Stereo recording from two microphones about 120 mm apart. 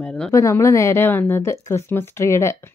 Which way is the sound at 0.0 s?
10° left (ahead or behind).